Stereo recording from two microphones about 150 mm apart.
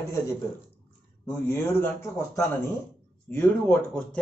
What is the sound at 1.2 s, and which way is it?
A man's voice, 15° left (ahead or behind).